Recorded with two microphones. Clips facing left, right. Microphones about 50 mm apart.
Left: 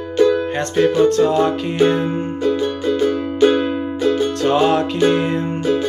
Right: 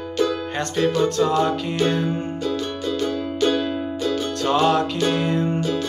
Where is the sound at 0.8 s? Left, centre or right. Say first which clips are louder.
Left 6 dB; left.